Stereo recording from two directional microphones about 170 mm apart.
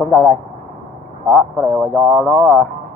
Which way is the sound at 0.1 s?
15° left (ahead or behind).